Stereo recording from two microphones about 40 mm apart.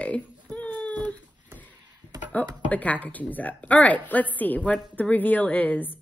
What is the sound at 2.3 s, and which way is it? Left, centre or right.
A woman's voice, left.